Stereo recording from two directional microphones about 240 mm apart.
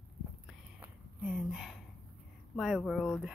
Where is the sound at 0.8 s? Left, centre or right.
Centre.